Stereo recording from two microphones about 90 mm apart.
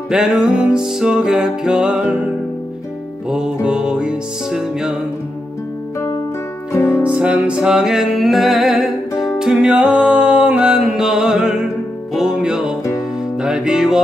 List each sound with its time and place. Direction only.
0.1 s music: 5° right (ahead or behind)
3.3 s music: 10° right (ahead or behind)
6.7 s music: 30° left (ahead or behind)
7.2 s music: 15° right (ahead or behind)